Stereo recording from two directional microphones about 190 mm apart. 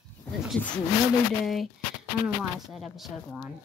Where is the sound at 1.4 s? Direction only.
Centre (ahead or behind).